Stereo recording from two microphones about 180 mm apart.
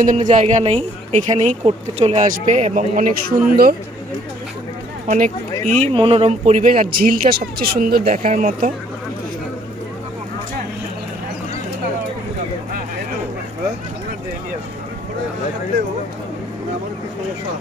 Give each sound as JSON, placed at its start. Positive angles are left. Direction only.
{"t": 0.0, "sound": "speech", "side_deg": -45}
{"t": 5.0, "sound": "speech", "side_deg": -40}